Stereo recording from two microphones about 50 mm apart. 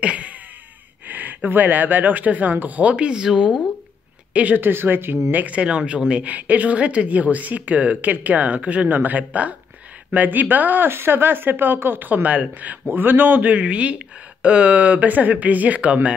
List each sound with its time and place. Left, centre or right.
0.0 s a sound: right
1.0 s a woman's voice: right; by 3.6 s centre
4.3 s speech: right
4.6 s speech: right
5.3 s speech: right
6.2 s a woman's voice: right
10.9 s speech: right